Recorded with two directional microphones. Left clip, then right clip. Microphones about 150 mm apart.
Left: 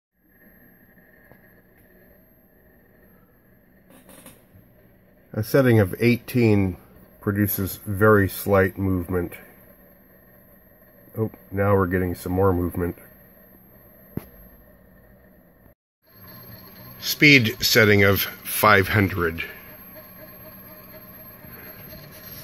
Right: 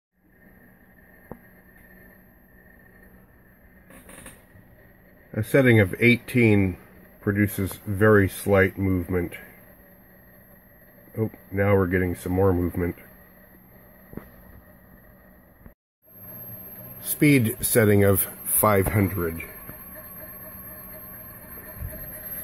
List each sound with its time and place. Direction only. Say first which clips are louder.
5.3 s speech: even; 10° right (ahead or behind)
11.2 s speech: left 1 dB; 10° right (ahead or behind)
17.0 s speech: left 6 dB; 25° right (ahead or behind); by 19.4 s 5° right (ahead or behind)